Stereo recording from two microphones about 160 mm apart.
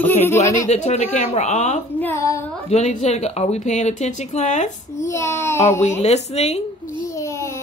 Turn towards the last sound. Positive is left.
turn(degrees=15)  # may be behind; listen again after turning